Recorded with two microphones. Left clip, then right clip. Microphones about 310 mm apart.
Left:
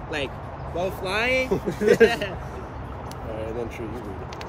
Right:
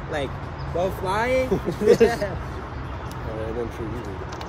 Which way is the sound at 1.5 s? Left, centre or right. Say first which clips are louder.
Right 2 dB; left.